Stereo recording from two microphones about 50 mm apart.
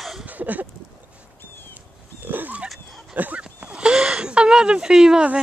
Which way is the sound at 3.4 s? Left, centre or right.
Centre.